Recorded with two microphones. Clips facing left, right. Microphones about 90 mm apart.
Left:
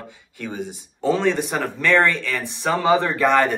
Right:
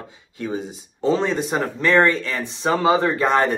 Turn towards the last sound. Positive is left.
turn(degrees=-20)  # may be behind; listen again after turning